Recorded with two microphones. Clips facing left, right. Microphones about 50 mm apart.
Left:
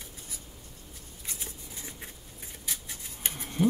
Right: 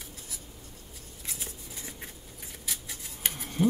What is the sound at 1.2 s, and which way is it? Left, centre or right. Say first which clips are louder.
Scissors: right 1 dB; centre.